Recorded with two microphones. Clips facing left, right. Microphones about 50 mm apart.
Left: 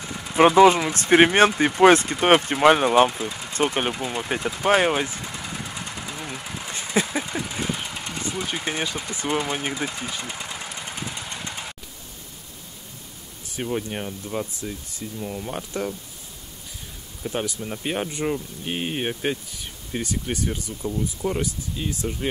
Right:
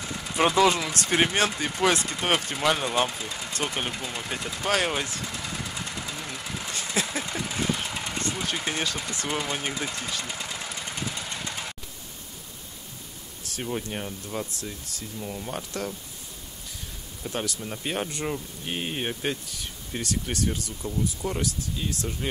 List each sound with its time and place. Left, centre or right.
0.0 s speech: centre
3.1 s speech: centre
3.5 s speech: left
4.0 s speech: centre
4.3 s vehicle: centre
6.7 s a sound: centre
7.1 s a sound: centre
8.2 s speech: centre
13.4 s speech: centre
17.2 s speech: centre